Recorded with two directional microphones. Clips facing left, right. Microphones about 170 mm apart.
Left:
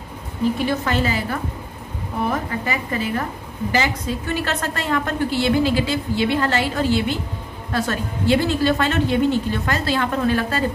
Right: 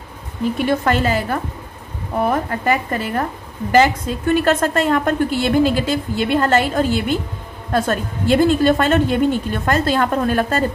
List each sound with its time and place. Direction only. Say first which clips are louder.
0.7 s a woman's voice: right 4 dB; 55° right (ahead or behind)
2.6 s a woman's voice: right 5 dB; 50° right (ahead or behind)